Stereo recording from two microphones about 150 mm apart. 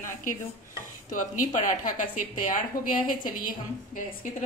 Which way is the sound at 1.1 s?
60° left (ahead or behind).